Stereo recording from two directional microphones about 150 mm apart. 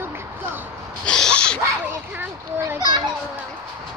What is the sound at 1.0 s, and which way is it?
Owl, 5° left (ahead or behind).